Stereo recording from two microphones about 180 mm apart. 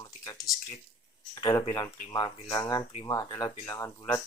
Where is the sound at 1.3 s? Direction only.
20° left (ahead or behind).